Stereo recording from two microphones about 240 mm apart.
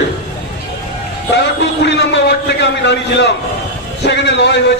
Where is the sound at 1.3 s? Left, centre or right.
Left.